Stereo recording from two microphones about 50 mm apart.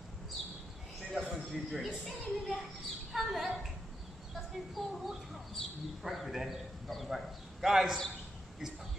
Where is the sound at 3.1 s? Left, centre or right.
Centre.